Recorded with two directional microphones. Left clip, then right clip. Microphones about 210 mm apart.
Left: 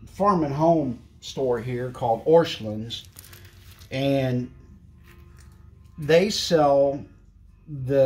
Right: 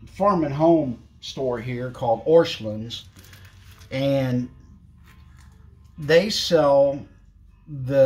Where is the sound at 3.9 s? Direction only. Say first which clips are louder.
Right 1 dB; 5° left (ahead or behind).